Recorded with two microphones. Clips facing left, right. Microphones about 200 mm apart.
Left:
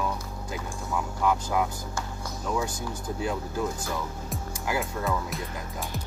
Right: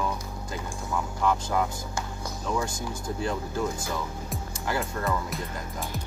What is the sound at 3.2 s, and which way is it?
Speech, 10° left (ahead or behind).